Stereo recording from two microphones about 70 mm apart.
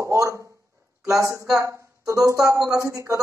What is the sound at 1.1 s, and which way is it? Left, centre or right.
Speech, right.